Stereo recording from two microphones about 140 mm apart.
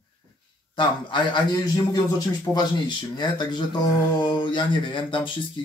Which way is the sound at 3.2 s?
30° left (ahead or behind).